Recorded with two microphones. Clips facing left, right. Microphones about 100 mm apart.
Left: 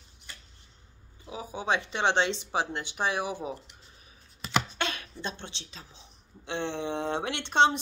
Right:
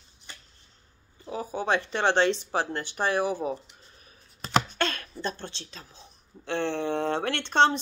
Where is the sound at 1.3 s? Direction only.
45° right (ahead or behind).